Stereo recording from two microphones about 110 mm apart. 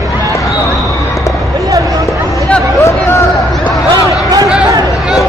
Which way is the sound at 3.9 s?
35° right (ahead or behind).